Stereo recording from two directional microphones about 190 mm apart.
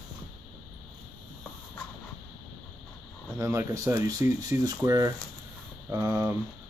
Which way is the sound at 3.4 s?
15° right (ahead or behind).